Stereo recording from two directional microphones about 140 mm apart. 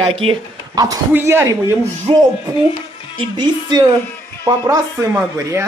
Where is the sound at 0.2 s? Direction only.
35° right (ahead or behind).